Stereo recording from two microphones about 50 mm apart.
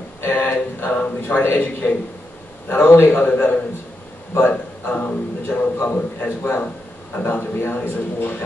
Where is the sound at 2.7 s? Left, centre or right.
Left.